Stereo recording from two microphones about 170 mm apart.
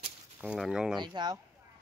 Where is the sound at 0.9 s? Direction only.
25° right (ahead or behind).